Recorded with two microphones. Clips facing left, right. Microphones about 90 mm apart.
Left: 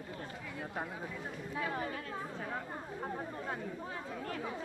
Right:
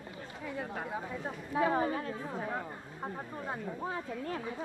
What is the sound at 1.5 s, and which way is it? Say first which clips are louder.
Speech: right 9 dB; 30° right (ahead or behind).